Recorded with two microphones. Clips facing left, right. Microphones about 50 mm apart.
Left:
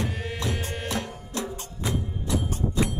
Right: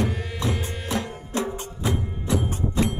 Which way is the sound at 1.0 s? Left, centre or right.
Right.